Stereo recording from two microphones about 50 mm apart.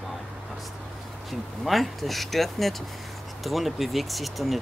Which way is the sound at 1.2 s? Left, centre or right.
Centre.